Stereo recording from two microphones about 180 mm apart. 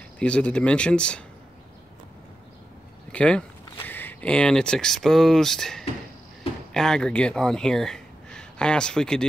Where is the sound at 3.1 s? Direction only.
5° left (ahead or behind).